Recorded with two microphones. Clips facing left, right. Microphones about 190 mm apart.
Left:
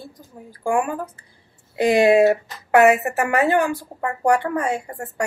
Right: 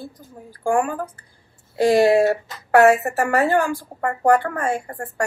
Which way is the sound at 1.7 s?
20° left (ahead or behind).